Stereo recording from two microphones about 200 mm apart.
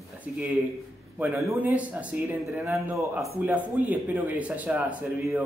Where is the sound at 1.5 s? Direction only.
10° right (ahead or behind).